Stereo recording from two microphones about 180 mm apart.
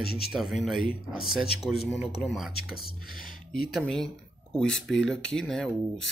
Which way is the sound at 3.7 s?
5° left (ahead or behind).